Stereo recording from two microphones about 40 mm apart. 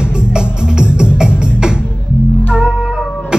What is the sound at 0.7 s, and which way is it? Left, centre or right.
Music, right.